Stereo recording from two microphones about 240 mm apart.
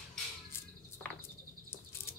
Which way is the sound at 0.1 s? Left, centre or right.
Centre.